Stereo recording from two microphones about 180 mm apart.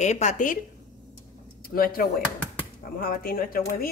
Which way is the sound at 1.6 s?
55° left (ahead or behind).